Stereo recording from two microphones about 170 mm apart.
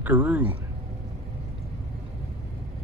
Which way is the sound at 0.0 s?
10° right (ahead or behind).